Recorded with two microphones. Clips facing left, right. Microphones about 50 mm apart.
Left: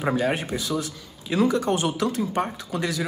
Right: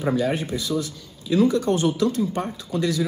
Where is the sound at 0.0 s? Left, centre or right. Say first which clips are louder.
Right 1 dB; left.